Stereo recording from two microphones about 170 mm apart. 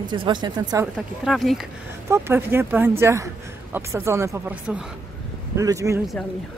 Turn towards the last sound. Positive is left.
turn(degrees=-20)  # may be behind; listen again after turning